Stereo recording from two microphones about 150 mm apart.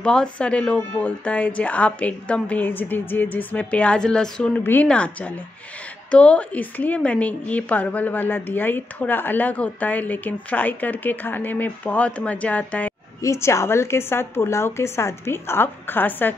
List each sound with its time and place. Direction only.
0.0 s a woman's voice: 5° left (ahead or behind)